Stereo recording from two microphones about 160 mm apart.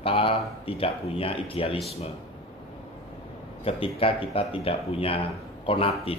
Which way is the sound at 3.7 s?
35° left (ahead or behind).